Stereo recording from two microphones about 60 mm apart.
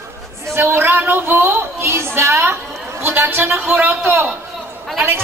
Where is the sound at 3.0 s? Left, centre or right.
Right.